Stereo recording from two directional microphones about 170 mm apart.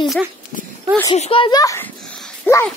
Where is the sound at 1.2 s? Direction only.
30° left (ahead or behind); by 1.9 s 15° left (ahead or behind).